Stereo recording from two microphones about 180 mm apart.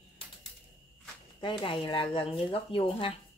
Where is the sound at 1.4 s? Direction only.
25° left (ahead or behind).